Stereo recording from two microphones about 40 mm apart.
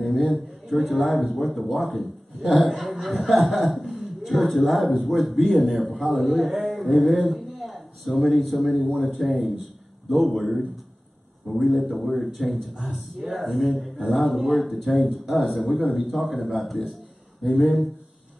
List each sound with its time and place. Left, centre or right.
0.0 s a man's voice: centre
7.0 s a sound: centre
8.3 s a man's voice: centre
11.4 s a man's voice: centre